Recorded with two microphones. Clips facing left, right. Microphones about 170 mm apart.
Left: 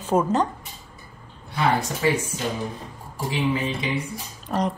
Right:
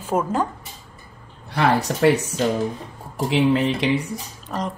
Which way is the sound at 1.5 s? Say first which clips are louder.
Right 3 dB; 70° right (ahead or behind).